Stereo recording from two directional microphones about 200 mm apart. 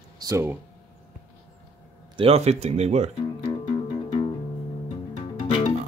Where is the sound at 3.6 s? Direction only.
25° left (ahead or behind).